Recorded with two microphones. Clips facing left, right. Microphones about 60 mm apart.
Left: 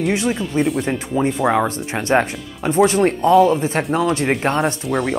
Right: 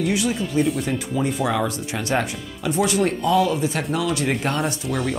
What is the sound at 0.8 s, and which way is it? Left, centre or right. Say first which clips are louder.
Speech: left 4 dB; left.